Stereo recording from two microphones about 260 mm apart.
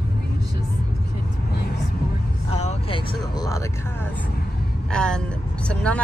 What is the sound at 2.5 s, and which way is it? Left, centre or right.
Vehicle, left.